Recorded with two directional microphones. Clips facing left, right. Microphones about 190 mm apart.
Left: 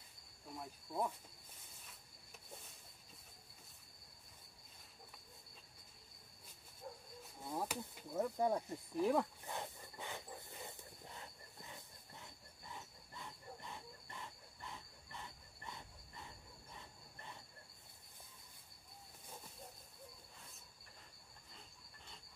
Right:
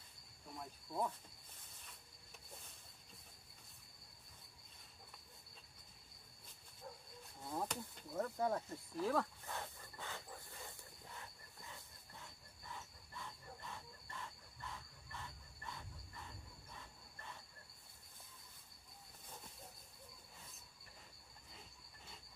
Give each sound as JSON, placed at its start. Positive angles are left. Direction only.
{"t": 0.6, "sound": "cricket", "side_deg": 5}
{"t": 7.4, "sound": "a sound", "side_deg": 10}
{"t": 12.6, "sound": "cricket", "side_deg": 20}